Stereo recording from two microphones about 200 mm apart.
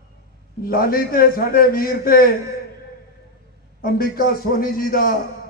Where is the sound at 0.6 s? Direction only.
45° left (ahead or behind).